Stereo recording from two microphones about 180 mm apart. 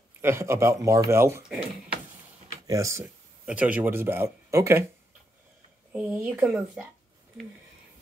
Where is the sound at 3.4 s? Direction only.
5° right (ahead or behind).